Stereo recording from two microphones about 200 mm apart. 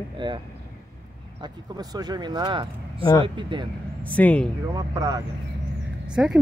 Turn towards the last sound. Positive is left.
turn(degrees=-5)  # may be behind; listen again after turning